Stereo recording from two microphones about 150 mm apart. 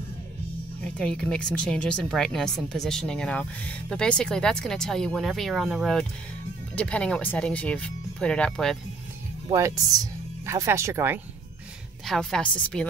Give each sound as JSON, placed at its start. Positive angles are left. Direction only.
{"t": 0.9, "sound": "speech", "side_deg": 5}
{"t": 9.5, "sound": "speech", "side_deg": -20}
{"t": 12.1, "sound": "speech", "side_deg": 5}